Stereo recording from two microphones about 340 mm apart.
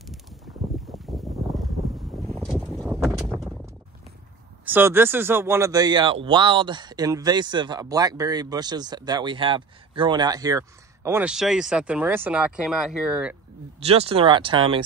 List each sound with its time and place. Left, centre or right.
0.7 s boat: centre
2.0 s vehicle: centre
4.6 s speech: centre
13.7 s speech: centre